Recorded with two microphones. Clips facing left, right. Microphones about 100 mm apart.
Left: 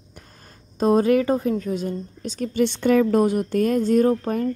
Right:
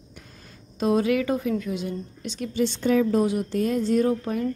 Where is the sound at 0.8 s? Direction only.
40° left (ahead or behind).